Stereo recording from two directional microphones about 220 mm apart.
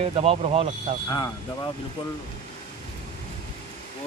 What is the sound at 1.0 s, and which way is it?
Speech, 15° left (ahead or behind).